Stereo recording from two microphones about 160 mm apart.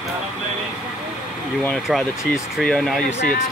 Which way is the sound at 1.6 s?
5° left (ahead or behind).